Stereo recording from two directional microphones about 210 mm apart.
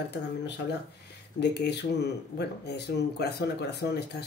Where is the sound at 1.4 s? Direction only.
50° left (ahead or behind).